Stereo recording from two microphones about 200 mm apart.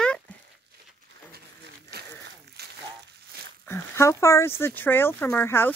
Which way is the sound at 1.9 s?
55° right (ahead or behind).